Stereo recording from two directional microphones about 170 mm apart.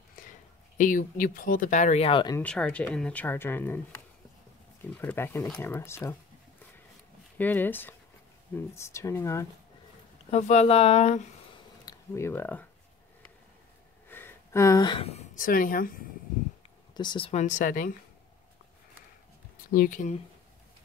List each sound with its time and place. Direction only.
0.7 s speech: 50° left (ahead or behind); by 2.3 s 30° left (ahead or behind)
2.3 s speech: 10° left (ahead or behind)
7.3 s speech: 10° left (ahead or behind)
10.3 s speech: 40° left (ahead or behind)
11.8 s speech: 20° left (ahead or behind)
14.0 s a sound: 10° left (ahead or behind); by 15.4 s 40° left (ahead or behind)
15.4 s speech: 55° left (ahead or behind)
16.9 s speech: 25° left (ahead or behind)
17.3 s speech: 45° left (ahead or behind)
19.7 s speech: 55° left (ahead or behind)